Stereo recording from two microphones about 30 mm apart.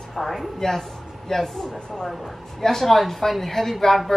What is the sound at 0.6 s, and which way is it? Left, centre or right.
Speech, centre.